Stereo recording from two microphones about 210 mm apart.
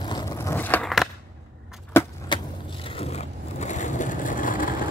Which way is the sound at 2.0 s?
10° left (ahead or behind).